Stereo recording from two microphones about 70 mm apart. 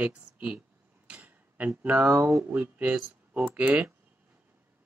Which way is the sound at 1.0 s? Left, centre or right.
Centre.